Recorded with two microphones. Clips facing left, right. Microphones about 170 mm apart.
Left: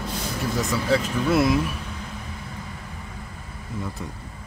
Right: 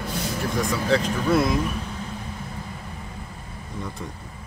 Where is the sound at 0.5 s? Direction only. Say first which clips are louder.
Even; 5° left (ahead or behind).